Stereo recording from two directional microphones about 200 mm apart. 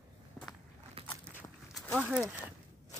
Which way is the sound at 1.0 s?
30° right (ahead or behind).